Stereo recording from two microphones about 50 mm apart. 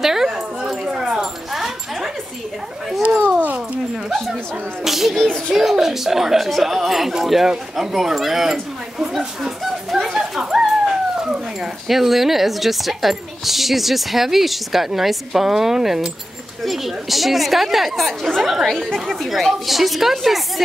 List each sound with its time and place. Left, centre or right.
0.0 s dog: centre
3.0 s dog: right
3.9 s speech: centre
5.1 s child singing: centre
5.5 s speech: centre
11.1 s dog: centre
11.9 s speech: centre